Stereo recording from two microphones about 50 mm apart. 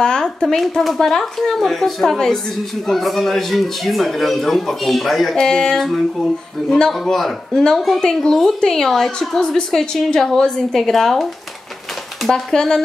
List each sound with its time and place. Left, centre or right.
0.0 s speech: centre
0.6 s speech: centre
6.9 s a woman's voice: centre
12.3 s a woman's voice: centre